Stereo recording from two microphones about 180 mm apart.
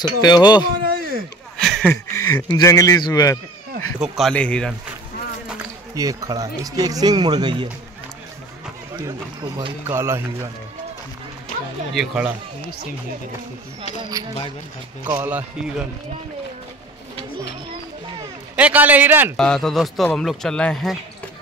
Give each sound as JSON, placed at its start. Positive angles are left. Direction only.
{"t": 0.0, "sound": "a man's voice", "side_deg": 25}
{"t": 0.9, "sound": "a sound", "side_deg": -55}
{"t": 1.6, "sound": "a sound", "side_deg": 0}
{"t": 1.9, "sound": "a man's voice", "side_deg": 20}
{"t": 4.2, "sound": "speech", "side_deg": 5}
{"t": 5.9, "sound": "speech", "side_deg": -20}
{"t": 8.9, "sound": "speech", "side_deg": -25}
{"t": 9.8, "sound": "a man's voice", "side_deg": -15}
{"t": 11.9, "sound": "speech", "side_deg": 0}
{"t": 14.2, "sound": "speech", "side_deg": -20}
{"t": 15.0, "sound": "a man's voice", "side_deg": -10}
{"t": 18.6, "sound": "a man's voice", "side_deg": -10}
{"t": 19.3, "sound": "speech", "side_deg": 5}